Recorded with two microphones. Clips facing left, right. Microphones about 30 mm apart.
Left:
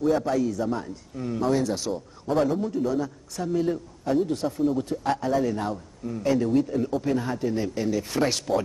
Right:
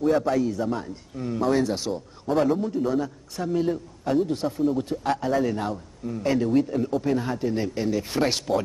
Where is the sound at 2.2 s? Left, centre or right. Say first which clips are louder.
Right 1 dB; centre.